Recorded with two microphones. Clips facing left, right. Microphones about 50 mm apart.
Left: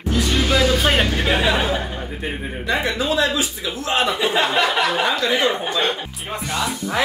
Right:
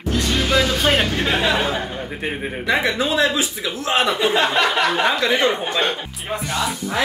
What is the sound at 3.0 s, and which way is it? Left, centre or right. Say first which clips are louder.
Speech: right 1 dB; right.